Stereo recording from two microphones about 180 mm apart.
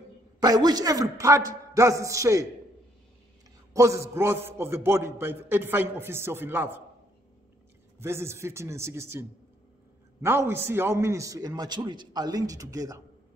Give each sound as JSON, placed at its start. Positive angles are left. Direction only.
{"t": 0.4, "sound": "a man's voice", "side_deg": -20}
{"t": 3.7, "sound": "a man's voice", "side_deg": -15}
{"t": 8.0, "sound": "a man's voice", "side_deg": -15}
{"t": 10.2, "sound": "a man's voice", "side_deg": -15}